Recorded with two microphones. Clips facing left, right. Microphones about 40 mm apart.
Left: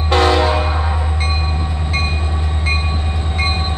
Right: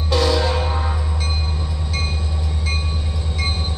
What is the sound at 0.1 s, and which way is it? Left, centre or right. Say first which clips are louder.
Train: left 5 dB; left.